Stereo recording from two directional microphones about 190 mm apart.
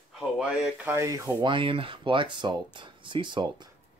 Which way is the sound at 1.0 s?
20° right (ahead or behind).